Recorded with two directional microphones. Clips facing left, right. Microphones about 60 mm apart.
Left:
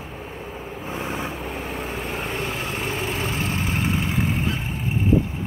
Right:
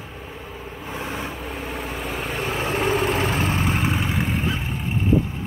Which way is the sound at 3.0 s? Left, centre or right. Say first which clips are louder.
Right 4 dB; right.